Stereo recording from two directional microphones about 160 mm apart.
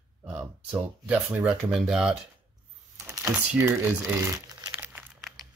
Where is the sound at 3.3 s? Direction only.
15° right (ahead or behind).